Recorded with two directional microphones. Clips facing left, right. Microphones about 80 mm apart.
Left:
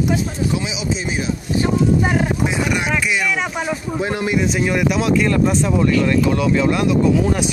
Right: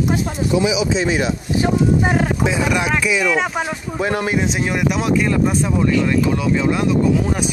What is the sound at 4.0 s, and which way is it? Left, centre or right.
Speech, right.